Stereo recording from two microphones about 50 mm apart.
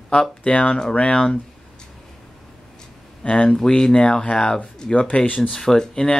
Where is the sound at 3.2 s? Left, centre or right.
Left.